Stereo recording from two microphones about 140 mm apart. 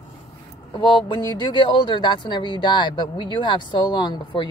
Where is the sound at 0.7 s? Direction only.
30° left (ahead or behind).